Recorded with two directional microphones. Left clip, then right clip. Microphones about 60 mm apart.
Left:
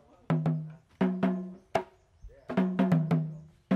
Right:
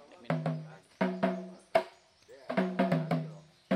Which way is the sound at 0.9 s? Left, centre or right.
Centre.